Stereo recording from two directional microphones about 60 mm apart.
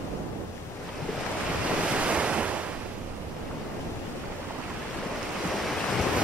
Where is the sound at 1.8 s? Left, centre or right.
Centre.